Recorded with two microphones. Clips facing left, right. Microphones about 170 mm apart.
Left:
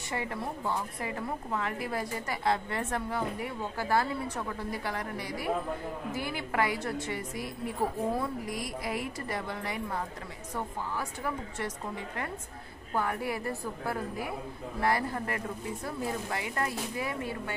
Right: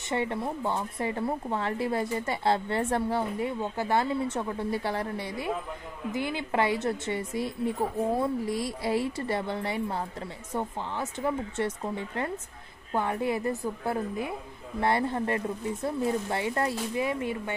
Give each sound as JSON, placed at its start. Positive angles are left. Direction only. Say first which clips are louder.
{"t": 0.1, "sound": "a woman's voice", "louder": "right 5 dB", "side_deg": -25}